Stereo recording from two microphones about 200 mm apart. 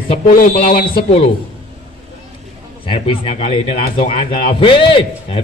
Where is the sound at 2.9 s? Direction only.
25° left (ahead or behind).